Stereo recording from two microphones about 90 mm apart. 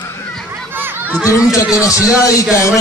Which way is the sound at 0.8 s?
25° right (ahead or behind).